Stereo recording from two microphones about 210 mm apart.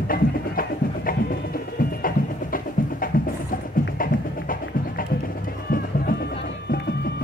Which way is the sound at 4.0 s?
40° left (ahead or behind).